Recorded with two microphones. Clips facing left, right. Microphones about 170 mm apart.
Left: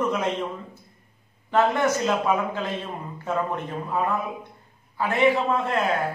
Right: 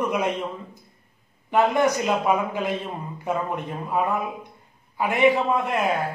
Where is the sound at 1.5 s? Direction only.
15° right (ahead or behind).